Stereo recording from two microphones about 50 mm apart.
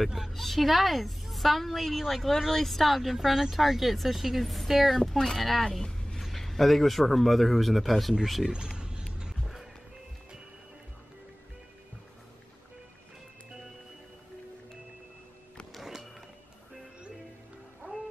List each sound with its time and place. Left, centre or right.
0.0 s a woman's voice: centre
5.7 s vehicle: centre
6.2 s a woman's voice: centre
8.5 s a sound: centre
9.2 s music: centre
15.7 s music: centre
17.8 s music: right